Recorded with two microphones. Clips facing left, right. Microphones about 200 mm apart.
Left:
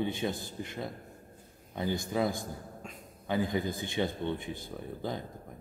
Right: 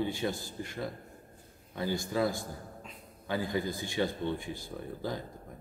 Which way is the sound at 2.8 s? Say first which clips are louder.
Left 3 dB; 45° left (ahead or behind).